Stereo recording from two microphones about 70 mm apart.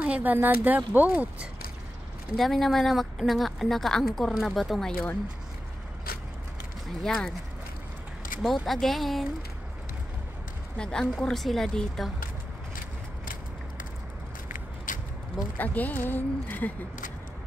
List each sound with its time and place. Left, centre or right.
0.0 s speech: right
2.3 s a woman's voice: centre
7.0 s a woman's voice: centre
8.4 s a woman's voice: centre
10.8 s a woman's voice: centre
15.5 s a woman's voice: left